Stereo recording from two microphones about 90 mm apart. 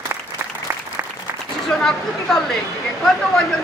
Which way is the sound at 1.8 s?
5° left (ahead or behind).